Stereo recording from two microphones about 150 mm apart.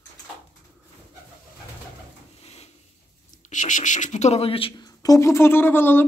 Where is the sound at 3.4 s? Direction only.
55° left (ahead or behind); by 4.9 s 35° left (ahead or behind).